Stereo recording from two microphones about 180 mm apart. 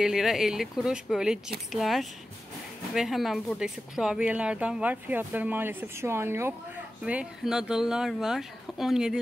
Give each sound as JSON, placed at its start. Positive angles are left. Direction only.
{"t": 0.0, "sound": "speech", "side_deg": 0}